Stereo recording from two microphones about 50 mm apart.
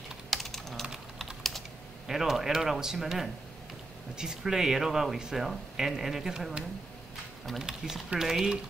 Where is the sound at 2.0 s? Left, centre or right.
Centre.